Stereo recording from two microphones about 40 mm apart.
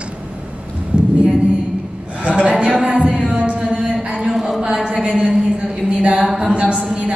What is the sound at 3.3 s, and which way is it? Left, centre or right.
Music, right.